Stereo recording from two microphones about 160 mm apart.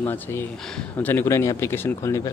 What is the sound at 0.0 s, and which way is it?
Speech, 15° left (ahead or behind).